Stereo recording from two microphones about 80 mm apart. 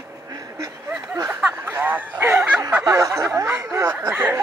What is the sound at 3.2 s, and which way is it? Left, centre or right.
Speech, right.